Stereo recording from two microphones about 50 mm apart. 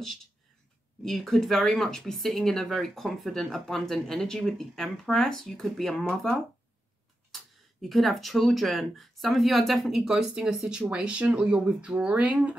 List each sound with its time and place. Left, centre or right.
0.0 s speech: centre
10.0 s speech: centre